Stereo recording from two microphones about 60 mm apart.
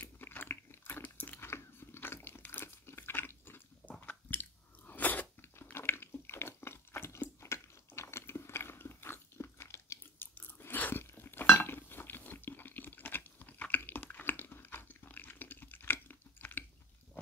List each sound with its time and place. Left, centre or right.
0.0 s biting: left
1.4 s crunch: left
4.0 s chewing: left
5.4 s a sound: left
7.3 s biting: left